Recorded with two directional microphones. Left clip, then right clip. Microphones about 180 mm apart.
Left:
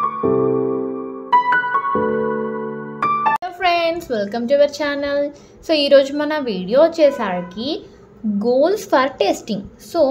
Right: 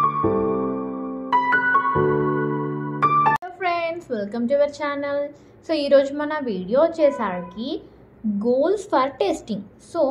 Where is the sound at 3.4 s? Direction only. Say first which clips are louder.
Left 6 dB; 30° left (ahead or behind).